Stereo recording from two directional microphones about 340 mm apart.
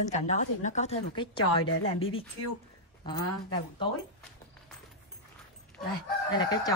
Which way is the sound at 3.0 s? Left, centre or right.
Centre.